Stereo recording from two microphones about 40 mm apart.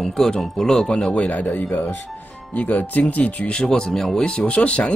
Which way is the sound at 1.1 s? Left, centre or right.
Left.